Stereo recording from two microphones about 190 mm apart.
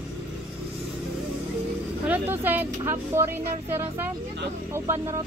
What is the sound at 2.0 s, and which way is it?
Speech, 10° right (ahead or behind).